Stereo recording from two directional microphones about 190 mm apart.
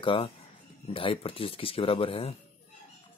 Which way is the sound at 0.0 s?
25° left (ahead or behind).